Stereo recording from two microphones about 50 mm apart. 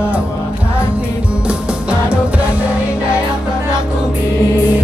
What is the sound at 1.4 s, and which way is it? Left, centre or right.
Music, right.